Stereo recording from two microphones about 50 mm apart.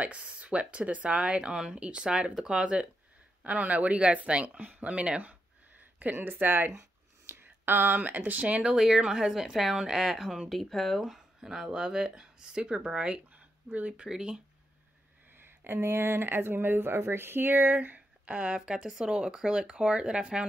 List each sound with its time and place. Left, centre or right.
0.0 s speech: right
6.7 s speech: right
8.7 s speech: centre
14.0 s speech: centre
15.3 s speech: right
17.7 s speech: right